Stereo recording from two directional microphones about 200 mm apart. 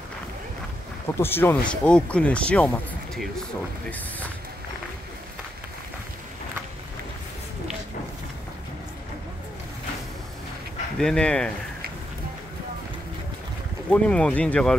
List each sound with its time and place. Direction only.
1.0 s speech: 10° left (ahead or behind)
11.0 s speech: 5° left (ahead or behind)
13.8 s speech: 5° left (ahead or behind)